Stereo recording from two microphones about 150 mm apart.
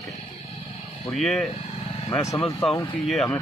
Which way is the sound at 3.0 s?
Centre (ahead or behind).